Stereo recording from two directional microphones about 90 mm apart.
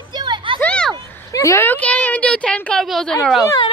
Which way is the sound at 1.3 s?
35° left (ahead or behind).